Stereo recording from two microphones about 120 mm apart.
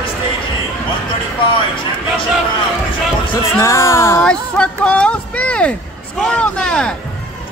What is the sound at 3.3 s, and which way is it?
Speech, 25° left (ahead or behind).